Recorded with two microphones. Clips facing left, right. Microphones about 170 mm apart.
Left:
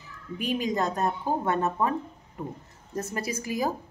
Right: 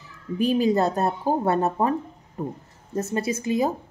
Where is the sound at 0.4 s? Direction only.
35° right (ahead or behind).